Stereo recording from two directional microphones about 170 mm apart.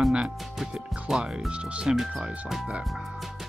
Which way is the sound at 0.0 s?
5° right (ahead or behind).